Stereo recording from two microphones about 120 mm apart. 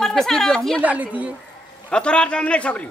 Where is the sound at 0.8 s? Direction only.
15° right (ahead or behind).